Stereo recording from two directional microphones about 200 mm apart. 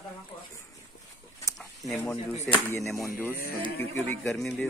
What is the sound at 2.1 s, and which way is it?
Speech, 30° left (ahead or behind).